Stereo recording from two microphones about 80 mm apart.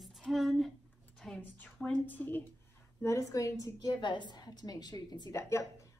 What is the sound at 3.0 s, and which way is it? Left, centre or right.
Speech, left.